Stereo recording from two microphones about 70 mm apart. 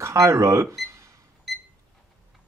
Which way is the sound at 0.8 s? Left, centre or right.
Right.